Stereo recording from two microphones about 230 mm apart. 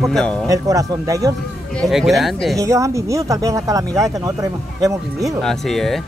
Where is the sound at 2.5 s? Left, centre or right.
Centre.